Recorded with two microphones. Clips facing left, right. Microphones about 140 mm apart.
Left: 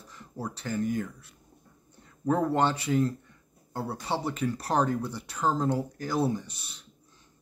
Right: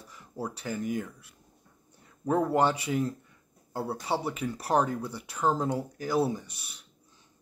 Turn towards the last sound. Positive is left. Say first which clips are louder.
# left 5 dB
turn(degrees=-10)  # may be behind; listen again after turning